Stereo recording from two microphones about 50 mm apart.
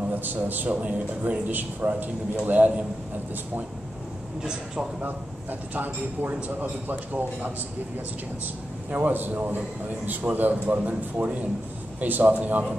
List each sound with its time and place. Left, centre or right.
0.1 s a man's voice: right
4.4 s speech: centre
5.0 s a man's voice: right
8.9 s a man's voice: right
9.6 s a man's voice: right
10.3 s a man's voice: right